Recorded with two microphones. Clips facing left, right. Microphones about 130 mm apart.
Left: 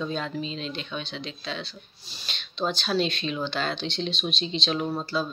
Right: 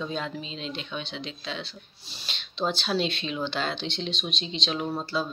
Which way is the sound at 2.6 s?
15° right (ahead or behind).